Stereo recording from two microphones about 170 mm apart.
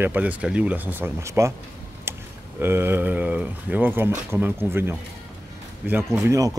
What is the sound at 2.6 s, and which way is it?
Speech, 15° right (ahead or behind).